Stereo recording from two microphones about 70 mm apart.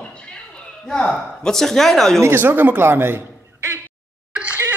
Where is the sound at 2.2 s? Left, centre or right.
Right.